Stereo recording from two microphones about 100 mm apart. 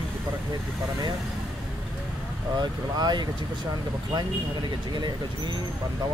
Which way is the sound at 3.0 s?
45° right (ahead or behind).